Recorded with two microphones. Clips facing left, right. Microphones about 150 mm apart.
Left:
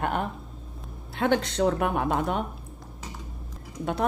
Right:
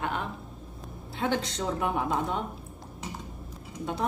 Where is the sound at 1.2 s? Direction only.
60° left (ahead or behind).